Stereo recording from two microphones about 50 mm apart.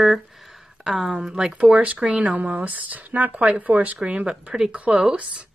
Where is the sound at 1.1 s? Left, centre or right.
Centre.